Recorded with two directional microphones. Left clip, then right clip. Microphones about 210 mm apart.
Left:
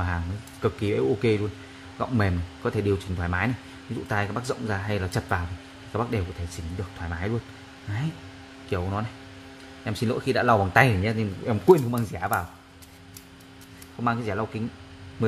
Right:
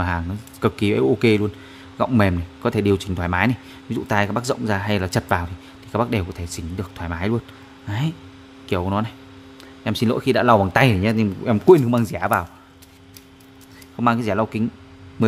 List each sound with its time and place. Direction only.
0.0 s speech: 50° right (ahead or behind)
8.6 s speech: 50° right (ahead or behind)
14.0 s speech: 50° right (ahead or behind)